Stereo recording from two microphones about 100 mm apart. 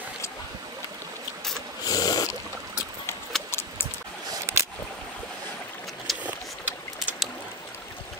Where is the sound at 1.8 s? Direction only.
40° left (ahead or behind).